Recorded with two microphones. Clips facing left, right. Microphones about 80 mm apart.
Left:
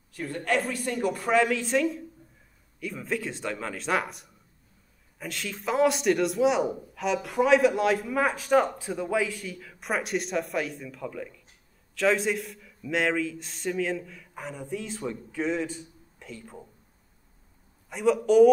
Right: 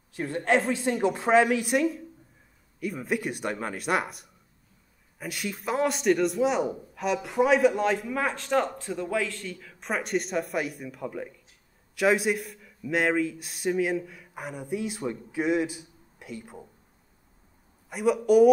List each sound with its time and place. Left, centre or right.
0.1 s a woman's voice: right
11.9 s a man's voice: centre
17.8 s a man's voice: centre